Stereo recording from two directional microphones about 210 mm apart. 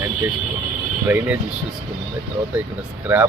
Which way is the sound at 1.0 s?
5° right (ahead or behind).